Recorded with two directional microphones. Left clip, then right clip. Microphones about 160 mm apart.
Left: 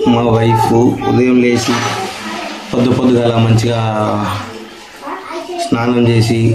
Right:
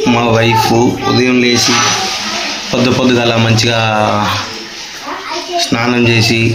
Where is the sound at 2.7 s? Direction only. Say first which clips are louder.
Right 1 dB; centre (ahead or behind).